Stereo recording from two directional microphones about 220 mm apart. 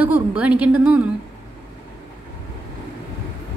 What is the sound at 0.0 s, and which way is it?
A woman's voice, 5° right (ahead or behind).